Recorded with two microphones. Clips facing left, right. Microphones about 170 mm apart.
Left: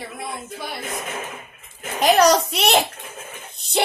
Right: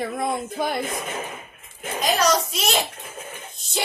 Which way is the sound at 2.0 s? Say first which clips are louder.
Left 6 dB; 65° left (ahead or behind).